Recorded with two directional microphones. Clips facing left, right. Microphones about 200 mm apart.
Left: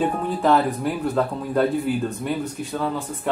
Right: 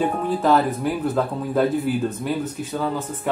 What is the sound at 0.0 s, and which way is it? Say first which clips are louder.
Speech: right 1 dB; centre (ahead or behind).